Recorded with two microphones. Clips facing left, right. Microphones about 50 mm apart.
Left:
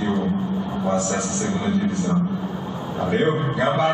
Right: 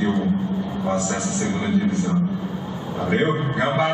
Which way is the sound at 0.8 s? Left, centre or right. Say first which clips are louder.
Left 1 dB; centre.